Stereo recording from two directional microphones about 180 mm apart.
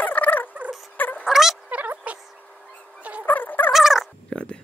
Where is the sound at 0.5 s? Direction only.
5° right (ahead or behind).